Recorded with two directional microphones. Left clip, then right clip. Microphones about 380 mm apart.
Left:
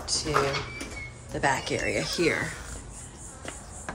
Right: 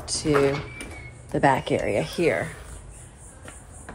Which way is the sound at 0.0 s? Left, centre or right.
Centre.